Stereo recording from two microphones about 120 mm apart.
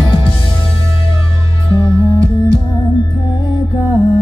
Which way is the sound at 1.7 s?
35° left (ahead or behind).